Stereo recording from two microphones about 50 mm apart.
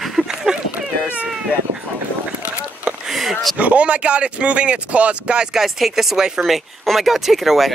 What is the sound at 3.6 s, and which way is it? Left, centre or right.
Speech, right.